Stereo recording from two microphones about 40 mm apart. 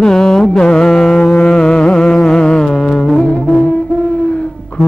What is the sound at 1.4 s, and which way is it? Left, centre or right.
Music, left.